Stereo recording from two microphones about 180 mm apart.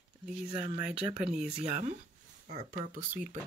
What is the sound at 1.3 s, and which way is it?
Speech, 40° right (ahead or behind).